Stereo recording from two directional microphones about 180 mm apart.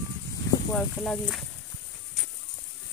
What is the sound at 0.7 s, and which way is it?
Speech, 5° left (ahead or behind).